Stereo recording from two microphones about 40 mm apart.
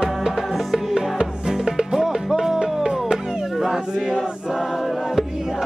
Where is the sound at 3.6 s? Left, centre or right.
Centre.